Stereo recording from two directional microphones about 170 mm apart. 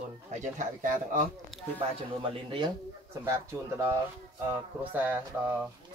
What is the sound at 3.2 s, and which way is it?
Speech, 15° right (ahead or behind).